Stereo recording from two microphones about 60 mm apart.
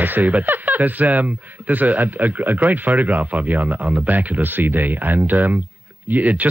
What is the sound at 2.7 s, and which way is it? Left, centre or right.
Speech, right.